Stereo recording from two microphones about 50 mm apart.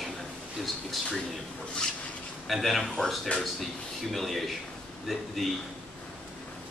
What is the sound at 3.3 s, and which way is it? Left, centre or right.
Speech, left.